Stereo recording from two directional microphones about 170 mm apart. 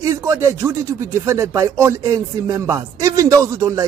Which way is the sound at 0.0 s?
20° right (ahead or behind).